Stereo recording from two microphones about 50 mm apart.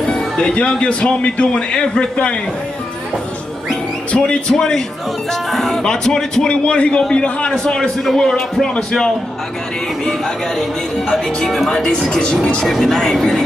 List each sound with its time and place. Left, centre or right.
0.0 s speech: centre
4.1 s speech: left
4.6 s speech: centre
11.1 s speech: centre
12.6 s speech: centre